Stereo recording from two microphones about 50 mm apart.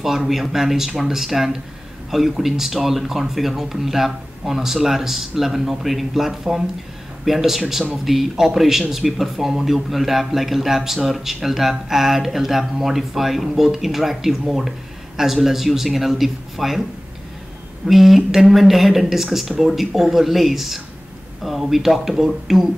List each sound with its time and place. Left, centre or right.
0.0 s speech: centre
17.8 s speech: centre